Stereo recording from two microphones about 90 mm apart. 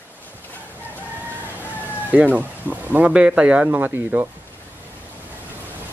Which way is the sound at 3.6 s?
20° right (ahead or behind).